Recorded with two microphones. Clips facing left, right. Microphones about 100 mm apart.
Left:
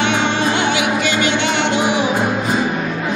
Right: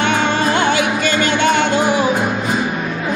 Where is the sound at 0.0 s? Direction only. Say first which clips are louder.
Right 1 dB; 45° right (ahead or behind).